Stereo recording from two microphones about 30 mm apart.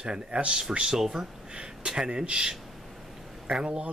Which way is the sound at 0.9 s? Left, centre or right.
Centre.